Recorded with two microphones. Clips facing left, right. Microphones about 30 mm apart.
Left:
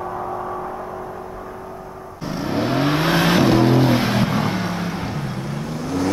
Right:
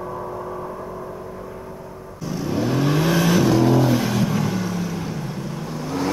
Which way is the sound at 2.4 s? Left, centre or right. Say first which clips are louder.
Left 1 dB; left.